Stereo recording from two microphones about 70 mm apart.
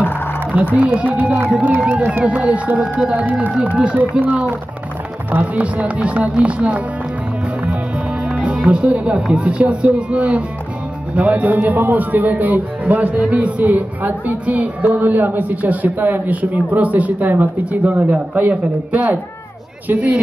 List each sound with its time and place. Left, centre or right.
0.7 s a man's voice: centre
8.3 s a man's voice: centre